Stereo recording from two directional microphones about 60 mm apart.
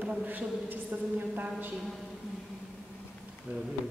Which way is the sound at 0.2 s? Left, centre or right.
Right.